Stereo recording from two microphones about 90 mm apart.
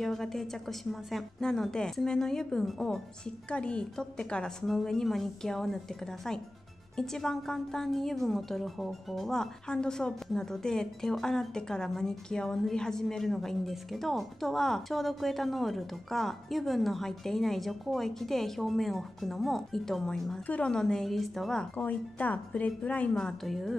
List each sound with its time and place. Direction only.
0.0 s a woman's voice: 5° left (ahead or behind)
7.0 s a woman's voice: 5° left (ahead or behind)
21.7 s a woman's voice: 15° left (ahead or behind); by 23.8 s centre (ahead or behind)